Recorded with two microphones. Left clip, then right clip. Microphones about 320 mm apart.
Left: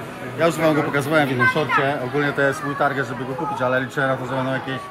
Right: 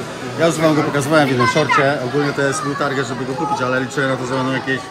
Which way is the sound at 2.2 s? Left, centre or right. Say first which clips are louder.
Right 2 dB; left.